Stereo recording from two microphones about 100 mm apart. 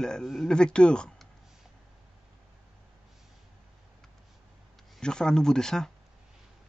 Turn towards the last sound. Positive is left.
turn(degrees=5)  # may be behind; listen again after turning